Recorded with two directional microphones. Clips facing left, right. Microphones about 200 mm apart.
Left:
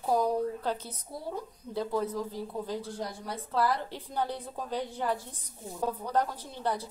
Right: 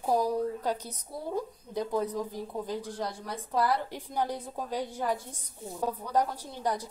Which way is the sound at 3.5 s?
15° right (ahead or behind).